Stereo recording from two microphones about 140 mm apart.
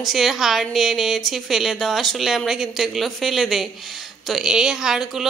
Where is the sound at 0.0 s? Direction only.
Centre (ahead or behind).